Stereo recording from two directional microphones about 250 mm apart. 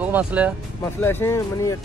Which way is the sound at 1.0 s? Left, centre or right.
Centre.